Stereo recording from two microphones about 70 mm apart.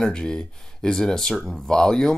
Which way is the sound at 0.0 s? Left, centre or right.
Centre.